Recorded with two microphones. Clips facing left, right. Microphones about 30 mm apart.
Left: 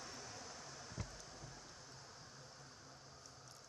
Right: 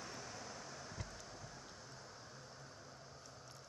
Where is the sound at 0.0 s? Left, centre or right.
Centre.